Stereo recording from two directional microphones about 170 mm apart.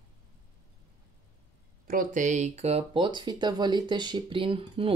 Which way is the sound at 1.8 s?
50° right (ahead or behind).